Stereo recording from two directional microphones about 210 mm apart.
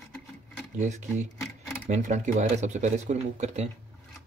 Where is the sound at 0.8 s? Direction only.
35° right (ahead or behind).